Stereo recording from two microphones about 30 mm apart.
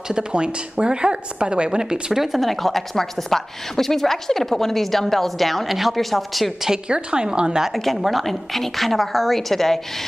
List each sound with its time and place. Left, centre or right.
0.1 s a woman's voice: right
2.1 s speech: centre
2.4 s a woman's voice: centre
6.9 s a woman's voice: right
7.7 s a woman's voice: centre